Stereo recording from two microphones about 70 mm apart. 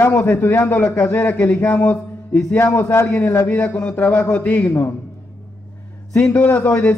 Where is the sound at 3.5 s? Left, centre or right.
Left.